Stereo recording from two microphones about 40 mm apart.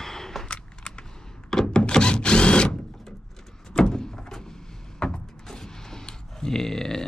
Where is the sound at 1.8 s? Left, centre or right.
Left.